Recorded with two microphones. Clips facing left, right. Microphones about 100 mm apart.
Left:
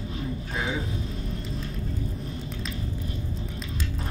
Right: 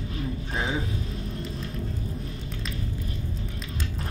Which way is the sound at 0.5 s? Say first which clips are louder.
Right 1 dB; 30° right (ahead or behind).